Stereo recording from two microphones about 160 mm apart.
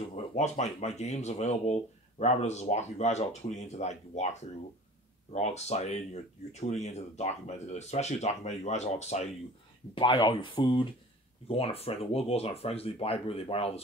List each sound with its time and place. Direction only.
0.1 s speech: 45° left (ahead or behind)
9.9 s speech: 30° left (ahead or behind)